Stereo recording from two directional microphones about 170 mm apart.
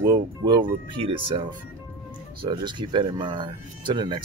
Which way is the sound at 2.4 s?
25° right (ahead or behind).